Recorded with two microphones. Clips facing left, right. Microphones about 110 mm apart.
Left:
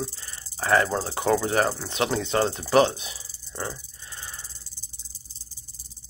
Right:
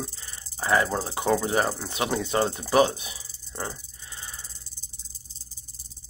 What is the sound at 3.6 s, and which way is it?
Rattle, 20° right (ahead or behind).